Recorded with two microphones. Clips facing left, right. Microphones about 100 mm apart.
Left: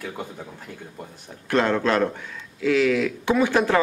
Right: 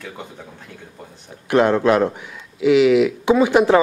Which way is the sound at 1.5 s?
15° right (ahead or behind).